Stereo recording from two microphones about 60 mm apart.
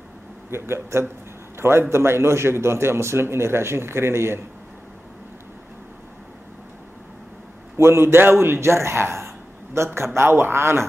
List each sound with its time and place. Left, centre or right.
0.5 s a man's voice: right
7.7 s a man's voice: right